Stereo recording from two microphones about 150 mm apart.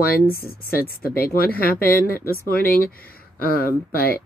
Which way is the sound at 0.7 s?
85° left.